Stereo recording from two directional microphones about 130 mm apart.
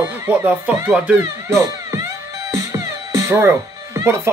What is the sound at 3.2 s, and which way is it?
Music, 20° right (ahead or behind).